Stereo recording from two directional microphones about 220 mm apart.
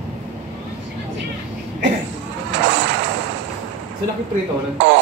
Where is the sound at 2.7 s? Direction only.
55° right (ahead or behind).